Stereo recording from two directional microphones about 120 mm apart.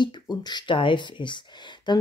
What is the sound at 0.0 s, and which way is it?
Speech, 35° left (ahead or behind).